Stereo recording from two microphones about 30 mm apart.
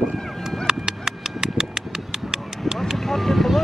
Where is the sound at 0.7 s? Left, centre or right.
Right.